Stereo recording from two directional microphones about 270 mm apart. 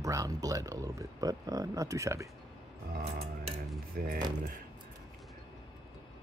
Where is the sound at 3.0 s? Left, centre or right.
Right.